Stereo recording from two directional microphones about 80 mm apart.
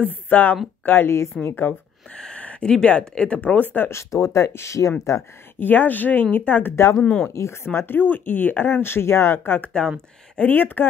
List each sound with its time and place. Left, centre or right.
0.0 s speech: left
2.1 s speech: centre
4.1 s speech: left
5.6 s speech: left
7.0 s speech: centre
7.2 s speech: left
9.7 s speech: centre
10.5 s speech: left